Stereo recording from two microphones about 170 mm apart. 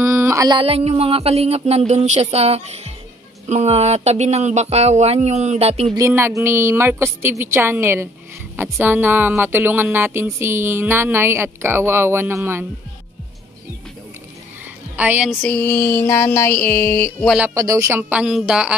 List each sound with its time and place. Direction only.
0.0 s a sound: 15° right (ahead or behind)
0.6 s speech: 35° right (ahead or behind)
5.9 s speech: 15° right (ahead or behind)
15.0 s speech: 10° right (ahead or behind)
15.4 s a sound: 10° left (ahead or behind)
17.6 s speech: 20° right (ahead or behind)